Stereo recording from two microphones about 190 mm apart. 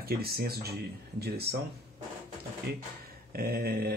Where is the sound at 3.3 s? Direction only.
55° right (ahead or behind).